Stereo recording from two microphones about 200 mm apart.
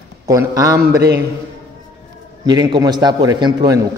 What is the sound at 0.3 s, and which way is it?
Speech, 15° right (ahead or behind).